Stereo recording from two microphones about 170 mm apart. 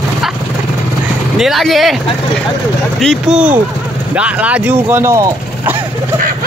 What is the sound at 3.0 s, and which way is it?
Speech, centre (ahead or behind).